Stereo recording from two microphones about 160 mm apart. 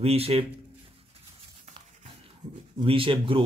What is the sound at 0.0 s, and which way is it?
Speech, 40° right (ahead or behind).